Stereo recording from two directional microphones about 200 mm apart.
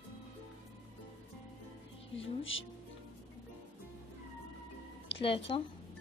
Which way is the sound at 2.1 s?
70° left (ahead or behind).